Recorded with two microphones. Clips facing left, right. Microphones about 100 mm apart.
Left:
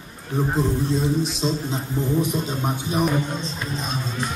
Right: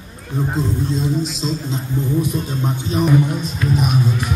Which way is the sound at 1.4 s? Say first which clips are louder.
Right 1 dB; 15° left (ahead or behind).